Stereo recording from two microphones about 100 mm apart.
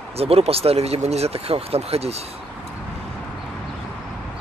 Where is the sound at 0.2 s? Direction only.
85° right.